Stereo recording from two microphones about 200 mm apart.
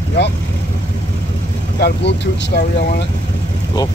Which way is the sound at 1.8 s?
55° left (ahead or behind).